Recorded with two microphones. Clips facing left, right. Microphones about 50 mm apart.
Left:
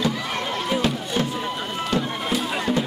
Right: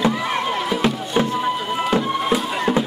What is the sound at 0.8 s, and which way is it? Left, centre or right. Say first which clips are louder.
Bagpipes: right 4 dB; centre.